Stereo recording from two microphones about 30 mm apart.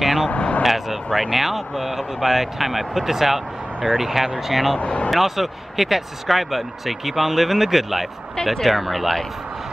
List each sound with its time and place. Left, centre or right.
0.0 s vehicle: centre
0.3 s speech: left
0.6 s vehicle: centre
1.3 s speech: centre
4.7 s speech: left
5.1 s speech: centre